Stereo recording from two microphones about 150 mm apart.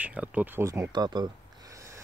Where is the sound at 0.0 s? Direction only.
10° right (ahead or behind).